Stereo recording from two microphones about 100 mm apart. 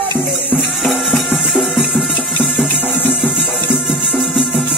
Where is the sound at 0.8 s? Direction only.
Centre (ahead or behind).